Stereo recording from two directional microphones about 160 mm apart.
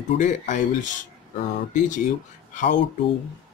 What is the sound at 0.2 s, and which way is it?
Speech, 50° left (ahead or behind).